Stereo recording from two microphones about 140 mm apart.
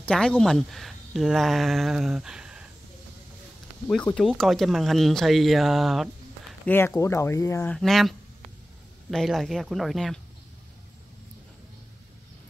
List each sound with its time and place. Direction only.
0.0 s speech: 10° left (ahead or behind)
3.8 s speech: 5° left (ahead or behind)
6.6 s speech: 15° left (ahead or behind)
7.7 s speech: centre (ahead or behind)
9.1 s speech: centre (ahead or behind)